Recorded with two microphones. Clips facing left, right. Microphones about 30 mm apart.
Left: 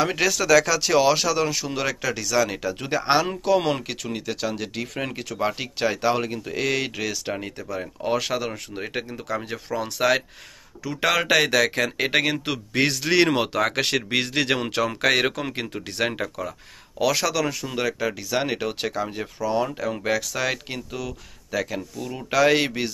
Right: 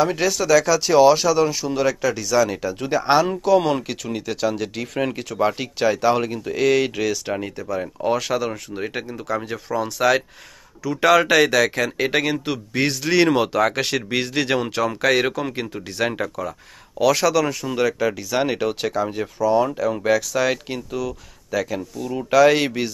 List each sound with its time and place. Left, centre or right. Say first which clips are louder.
0.0 s speech: right 2 dB; left
0.8 s speech: right 5 dB; left
2.3 s speech: right 2 dB; left
3.7 s speech: right 4 dB; left
4.0 s speech: right 4 dB; centre
5.6 s speech: right 4 dB; centre
8.2 s speech: right 3 dB; centre
8.5 s speech: right 4 dB; centre
11.8 s speech: right 1 dB; left
12.3 s speech: right 2 dB; left
13.1 s speech: right 4 dB; left
14.6 s speech: right 2 dB; left
17.0 s speech: right 5 dB; centre
19.5 s speech: right 5 dB; centre